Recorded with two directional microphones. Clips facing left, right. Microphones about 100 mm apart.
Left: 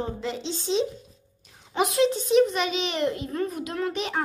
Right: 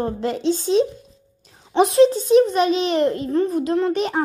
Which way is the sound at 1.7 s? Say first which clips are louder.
Right 8 dB; 30° right (ahead or behind).